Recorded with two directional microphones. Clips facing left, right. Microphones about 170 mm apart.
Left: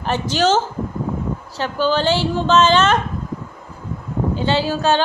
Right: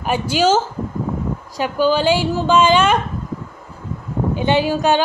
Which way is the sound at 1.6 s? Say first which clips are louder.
Right 2 dB; 10° right (ahead or behind).